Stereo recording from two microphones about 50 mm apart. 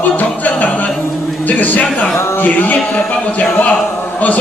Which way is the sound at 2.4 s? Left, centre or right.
Left.